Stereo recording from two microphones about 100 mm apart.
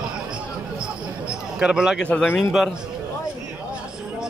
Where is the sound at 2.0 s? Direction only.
10° left (ahead or behind).